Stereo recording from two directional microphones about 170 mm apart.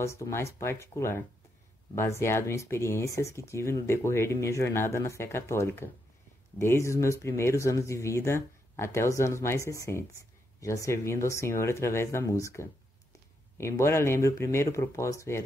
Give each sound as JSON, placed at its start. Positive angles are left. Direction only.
{"t": 0.0, "sound": "speech", "side_deg": 15}